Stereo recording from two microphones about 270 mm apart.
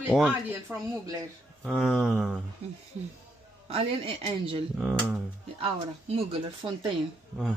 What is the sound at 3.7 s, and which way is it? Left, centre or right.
Speech, right.